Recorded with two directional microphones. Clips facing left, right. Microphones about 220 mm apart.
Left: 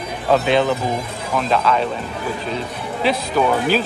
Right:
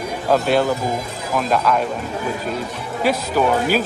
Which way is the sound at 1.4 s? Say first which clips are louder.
Even; 10° right (ahead or behind).